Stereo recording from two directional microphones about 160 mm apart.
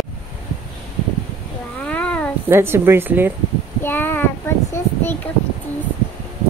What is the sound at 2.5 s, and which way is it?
Speech, 15° right (ahead or behind).